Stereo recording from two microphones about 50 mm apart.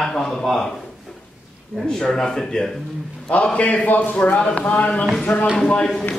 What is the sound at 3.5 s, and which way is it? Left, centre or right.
Speech, left.